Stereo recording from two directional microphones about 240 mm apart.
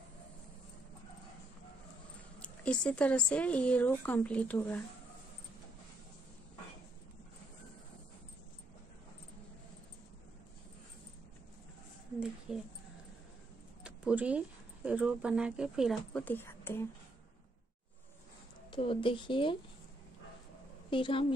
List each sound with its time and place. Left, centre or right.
2.4 s speech: centre
12.2 s a sound: centre
13.8 s speech: centre
18.7 s speech: left
20.9 s speech: left